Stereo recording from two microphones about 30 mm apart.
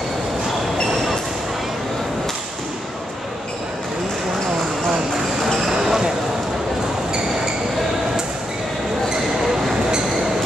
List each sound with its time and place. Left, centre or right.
5.6 s basketball bounce: centre